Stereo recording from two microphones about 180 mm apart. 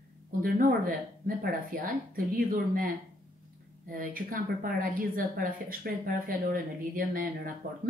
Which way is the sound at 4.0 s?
50° right (ahead or behind).